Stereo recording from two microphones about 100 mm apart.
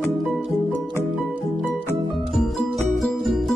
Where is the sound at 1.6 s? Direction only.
20° left (ahead or behind).